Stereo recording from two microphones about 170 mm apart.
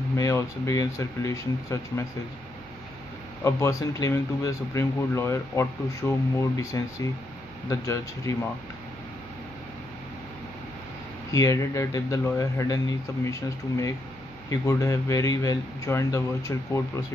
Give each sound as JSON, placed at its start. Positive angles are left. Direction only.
{"t": 0.1, "sound": "a man's voice", "side_deg": 20}
{"t": 3.4, "sound": "a man's voice", "side_deg": 20}
{"t": 11.3, "sound": "a man's voice", "side_deg": 20}